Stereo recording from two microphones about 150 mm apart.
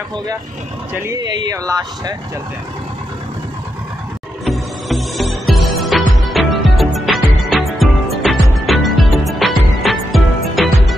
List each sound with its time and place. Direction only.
1.0 s speech: 25° right (ahead or behind)
4.5 s music: centre (ahead or behind)